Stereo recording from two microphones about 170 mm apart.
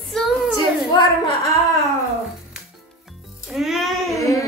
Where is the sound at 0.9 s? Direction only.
20° left (ahead or behind).